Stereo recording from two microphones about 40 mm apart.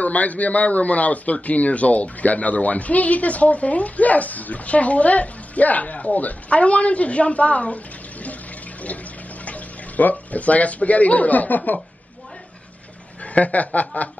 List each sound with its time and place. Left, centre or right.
0.0 s a man's voice: left
13.2 s a man's voice: left